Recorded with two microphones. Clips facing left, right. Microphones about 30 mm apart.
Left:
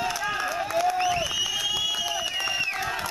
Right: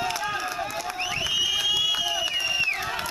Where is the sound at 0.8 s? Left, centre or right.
Centre.